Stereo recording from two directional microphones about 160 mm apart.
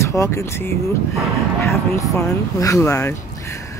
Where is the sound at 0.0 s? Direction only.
20° left (ahead or behind).